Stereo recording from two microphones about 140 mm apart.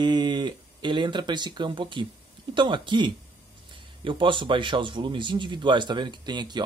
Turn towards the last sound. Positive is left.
turn(degrees=-30)  # may be behind; listen again after turning